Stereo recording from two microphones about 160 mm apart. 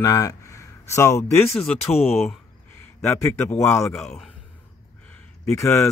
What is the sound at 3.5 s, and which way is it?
Speech, 15° left (ahead or behind).